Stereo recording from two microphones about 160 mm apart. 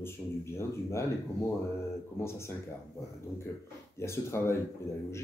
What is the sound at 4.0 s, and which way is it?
Speech, 15° left (ahead or behind).